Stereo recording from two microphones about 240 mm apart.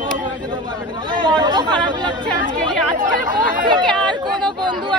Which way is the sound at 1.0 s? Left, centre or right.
Centre.